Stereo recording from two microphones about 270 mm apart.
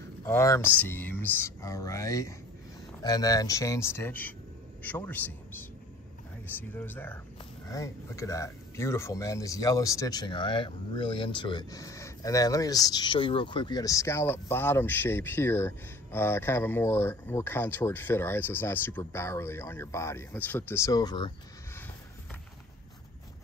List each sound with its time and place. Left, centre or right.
0.2 s speech: centre
6.7 s speech: centre